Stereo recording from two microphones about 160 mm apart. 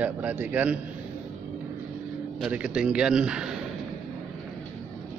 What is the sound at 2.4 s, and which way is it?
A man's voice, 5° right (ahead or behind).